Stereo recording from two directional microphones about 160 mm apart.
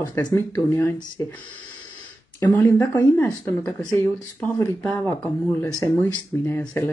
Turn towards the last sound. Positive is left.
turn(degrees=15)  # may be behind; listen again after turning